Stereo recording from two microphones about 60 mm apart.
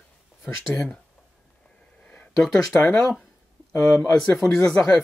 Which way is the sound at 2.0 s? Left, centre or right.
Left.